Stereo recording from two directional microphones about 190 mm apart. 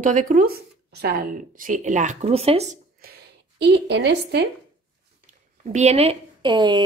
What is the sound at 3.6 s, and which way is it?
Speech, 65° right (ahead or behind).